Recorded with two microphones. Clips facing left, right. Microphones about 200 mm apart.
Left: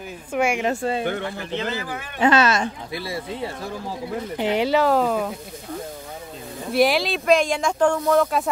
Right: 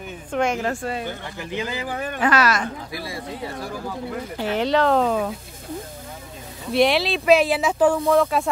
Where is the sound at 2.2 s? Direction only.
25° left (ahead or behind).